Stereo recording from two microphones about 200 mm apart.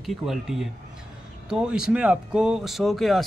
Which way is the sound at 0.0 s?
Centre (ahead or behind).